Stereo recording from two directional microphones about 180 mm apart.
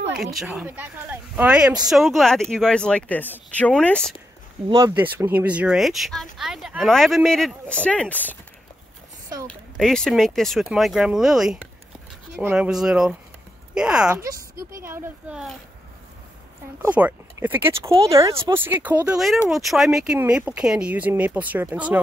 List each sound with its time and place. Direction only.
0.2 s speech: centre (ahead or behind)
4.6 s speech: 25° right (ahead or behind)
4.9 s speech: 10° right (ahead or behind); by 8.4 s 10° left (ahead or behind)
9.5 s speech: 5° left (ahead or behind)
14.0 s speech: 20° right (ahead or behind)
16.8 s speech: 10° right (ahead or behind)